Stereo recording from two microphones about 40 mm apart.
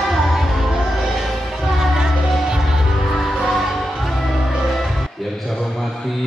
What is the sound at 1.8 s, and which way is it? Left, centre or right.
Music, centre.